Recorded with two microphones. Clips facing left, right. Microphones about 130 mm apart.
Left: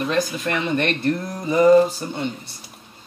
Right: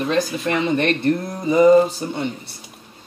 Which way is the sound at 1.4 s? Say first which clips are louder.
Right 2 dB; 10° right (ahead or behind).